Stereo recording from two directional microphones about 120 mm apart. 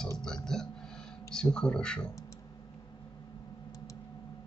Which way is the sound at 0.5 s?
5° left (ahead or behind).